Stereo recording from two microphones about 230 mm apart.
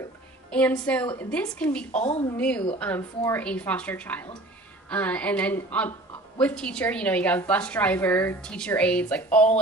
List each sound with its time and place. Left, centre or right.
0.5 s a woman's voice: centre
1.9 s speech: left
2.3 s a woman's voice: centre